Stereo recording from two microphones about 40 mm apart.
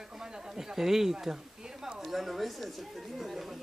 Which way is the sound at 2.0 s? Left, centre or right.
Centre.